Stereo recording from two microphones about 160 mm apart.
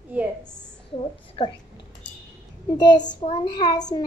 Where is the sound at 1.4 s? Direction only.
35° left (ahead or behind).